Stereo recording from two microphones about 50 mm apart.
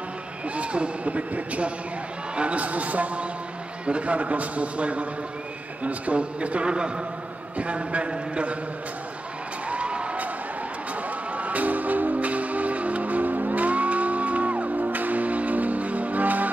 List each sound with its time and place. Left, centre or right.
0.6 s a man's voice: right
9.7 s a sound: right
11.3 s music: right